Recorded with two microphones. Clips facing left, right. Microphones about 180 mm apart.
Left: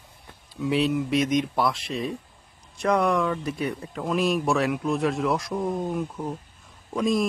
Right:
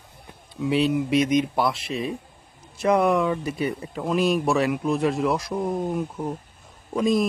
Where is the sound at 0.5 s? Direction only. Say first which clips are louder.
Right 2 dB; centre (ahead or behind).